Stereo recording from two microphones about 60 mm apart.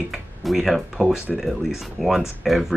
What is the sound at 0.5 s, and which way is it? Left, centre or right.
Speech, centre.